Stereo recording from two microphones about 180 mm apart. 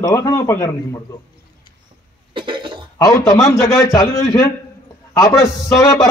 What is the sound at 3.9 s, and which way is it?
A man's voice, 20° left (ahead or behind).